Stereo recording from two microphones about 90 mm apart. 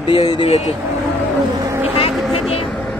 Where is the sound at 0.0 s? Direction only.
50° left (ahead or behind).